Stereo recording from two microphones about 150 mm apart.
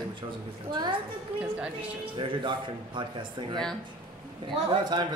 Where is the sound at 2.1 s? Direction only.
35° right (ahead or behind).